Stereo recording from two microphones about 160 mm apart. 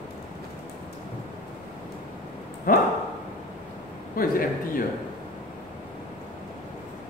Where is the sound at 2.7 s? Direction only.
65° left (ahead or behind).